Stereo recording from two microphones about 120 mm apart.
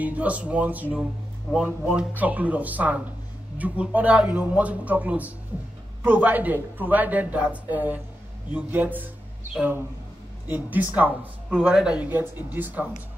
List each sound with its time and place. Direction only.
0.0 s speech: 10° right (ahead or behind)